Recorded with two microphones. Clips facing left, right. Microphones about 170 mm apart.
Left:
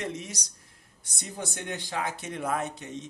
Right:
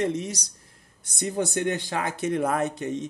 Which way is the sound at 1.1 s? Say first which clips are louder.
Right 11 dB; 65° right (ahead or behind).